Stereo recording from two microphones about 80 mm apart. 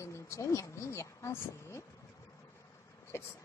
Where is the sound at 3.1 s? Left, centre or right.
Left.